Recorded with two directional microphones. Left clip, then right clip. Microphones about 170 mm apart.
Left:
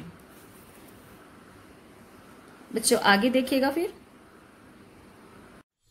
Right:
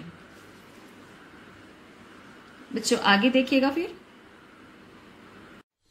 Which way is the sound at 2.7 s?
50° left (ahead or behind).